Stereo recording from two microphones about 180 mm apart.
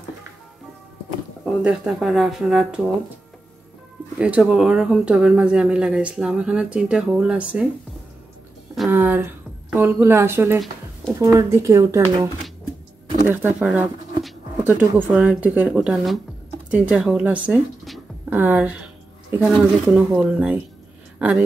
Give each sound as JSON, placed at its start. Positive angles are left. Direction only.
{"t": 1.4, "sound": "speech", "side_deg": -5}
{"t": 4.2, "sound": "speech", "side_deg": -5}
{"t": 8.9, "sound": "a woman's voice", "side_deg": -10}
{"t": 13.3, "sound": "speech", "side_deg": -10}